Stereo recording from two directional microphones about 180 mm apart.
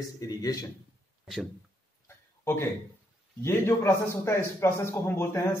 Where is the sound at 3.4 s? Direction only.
15° left (ahead or behind).